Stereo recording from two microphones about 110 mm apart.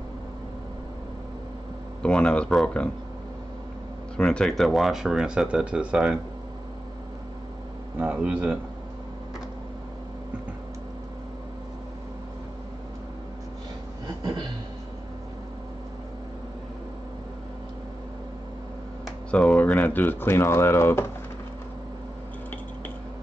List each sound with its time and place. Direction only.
2.0 s speech: 10° left (ahead or behind)
4.2 s speech: 10° left (ahead or behind); by 6.1 s 10° right (ahead or behind)
8.0 s speech: 10° right (ahead or behind)
14.0 s a sound: 40° right (ahead or behind)
19.3 s speech: 10° left (ahead or behind)